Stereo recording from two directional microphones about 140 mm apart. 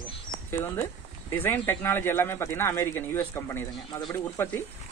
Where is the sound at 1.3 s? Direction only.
15° left (ahead or behind).